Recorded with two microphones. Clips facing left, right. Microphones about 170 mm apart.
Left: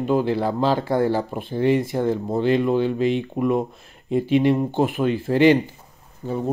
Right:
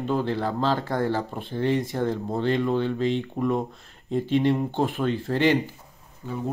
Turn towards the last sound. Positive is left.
turn(degrees=35)  # may be behind; listen again after turning